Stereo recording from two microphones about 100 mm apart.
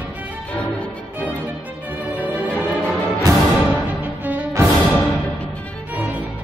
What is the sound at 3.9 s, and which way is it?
Music, 20° right (ahead or behind).